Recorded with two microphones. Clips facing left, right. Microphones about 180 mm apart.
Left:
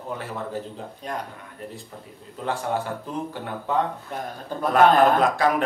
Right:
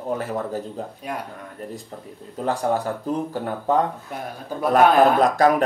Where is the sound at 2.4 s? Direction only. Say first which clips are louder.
Right 4 dB; 40° right (ahead or behind).